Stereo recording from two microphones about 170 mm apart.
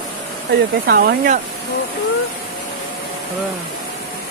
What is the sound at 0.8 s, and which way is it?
Speech, 65° right (ahead or behind).